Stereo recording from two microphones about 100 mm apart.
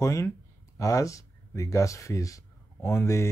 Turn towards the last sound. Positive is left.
turn(degrees=25)  # may be behind; listen again after turning